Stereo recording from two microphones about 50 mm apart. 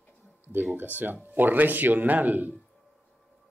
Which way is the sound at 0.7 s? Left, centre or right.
Right.